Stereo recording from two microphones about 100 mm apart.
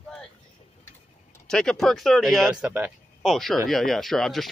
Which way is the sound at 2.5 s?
15° right (ahead or behind).